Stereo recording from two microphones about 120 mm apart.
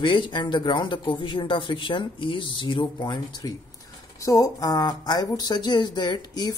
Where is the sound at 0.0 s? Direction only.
40° left (ahead or behind).